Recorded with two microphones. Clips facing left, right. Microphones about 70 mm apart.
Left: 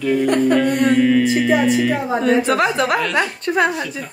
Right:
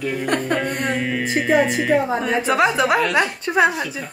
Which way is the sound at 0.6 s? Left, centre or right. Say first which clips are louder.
Left 8 dB; centre.